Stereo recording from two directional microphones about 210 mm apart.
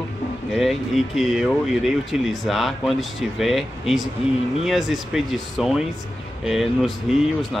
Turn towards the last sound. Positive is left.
turn(degrees=0)  # may be behind; listen again after turning